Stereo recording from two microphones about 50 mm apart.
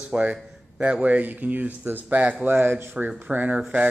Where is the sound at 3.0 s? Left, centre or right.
Right.